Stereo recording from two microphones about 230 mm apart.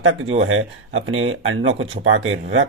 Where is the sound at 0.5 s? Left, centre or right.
Right.